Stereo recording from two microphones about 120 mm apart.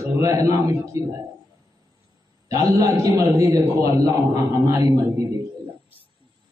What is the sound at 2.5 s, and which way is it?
A man's voice, 30° right (ahead or behind).